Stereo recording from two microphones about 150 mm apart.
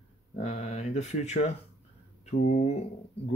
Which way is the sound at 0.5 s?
50° left (ahead or behind).